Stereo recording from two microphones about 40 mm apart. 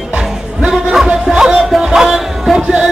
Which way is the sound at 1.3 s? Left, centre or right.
Centre.